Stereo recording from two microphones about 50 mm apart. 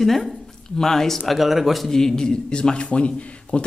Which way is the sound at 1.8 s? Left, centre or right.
Centre.